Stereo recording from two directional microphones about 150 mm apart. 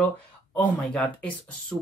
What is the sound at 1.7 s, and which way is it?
Speech, 5° right (ahead or behind).